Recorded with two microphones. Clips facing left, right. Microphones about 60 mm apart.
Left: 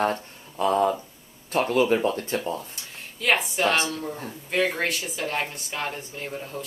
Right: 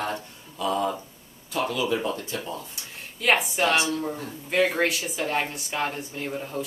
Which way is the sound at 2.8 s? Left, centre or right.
Centre.